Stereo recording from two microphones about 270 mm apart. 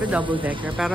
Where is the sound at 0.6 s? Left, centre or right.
Centre.